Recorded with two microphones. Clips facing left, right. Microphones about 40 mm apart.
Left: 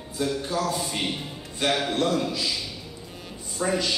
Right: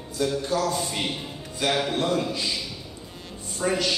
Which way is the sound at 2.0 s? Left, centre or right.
Right.